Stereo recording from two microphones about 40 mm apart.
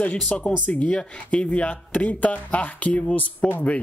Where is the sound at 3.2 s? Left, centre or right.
Left.